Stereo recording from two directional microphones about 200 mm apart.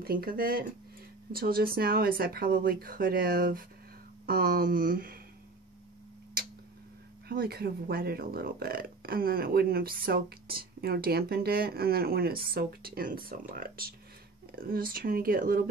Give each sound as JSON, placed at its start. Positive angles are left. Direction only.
{"t": 0.0, "sound": "speech", "side_deg": -50}
{"t": 7.2, "sound": "speech", "side_deg": -50}